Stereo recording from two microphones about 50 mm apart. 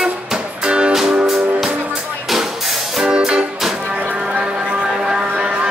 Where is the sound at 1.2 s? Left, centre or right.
Centre.